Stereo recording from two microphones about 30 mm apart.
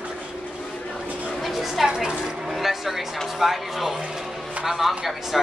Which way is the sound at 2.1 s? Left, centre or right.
Right.